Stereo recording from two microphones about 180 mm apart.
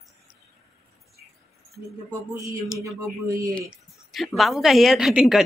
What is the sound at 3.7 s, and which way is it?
A woman's voice, centre (ahead or behind).